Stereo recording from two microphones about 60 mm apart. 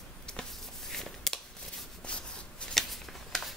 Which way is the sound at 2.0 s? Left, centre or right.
Centre.